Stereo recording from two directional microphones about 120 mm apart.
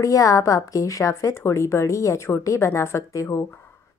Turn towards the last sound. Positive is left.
turn(degrees=25)  # may be behind; listen again after turning